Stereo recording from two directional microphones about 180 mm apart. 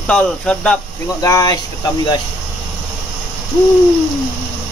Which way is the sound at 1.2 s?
20° left (ahead or behind).